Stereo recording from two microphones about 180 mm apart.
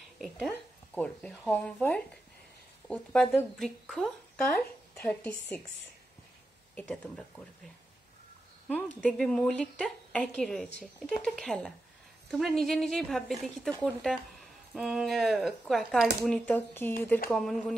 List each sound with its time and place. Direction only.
0.2 s a woman's voice: 5° left (ahead or behind)
6.7 s speech: 10° left (ahead or behind)
9.0 s a woman's voice: 5° left (ahead or behind)